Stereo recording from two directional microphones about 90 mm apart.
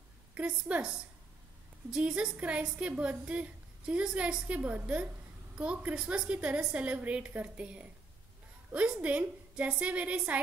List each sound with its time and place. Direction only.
0.3 s a woman's voice: 15° right (ahead or behind)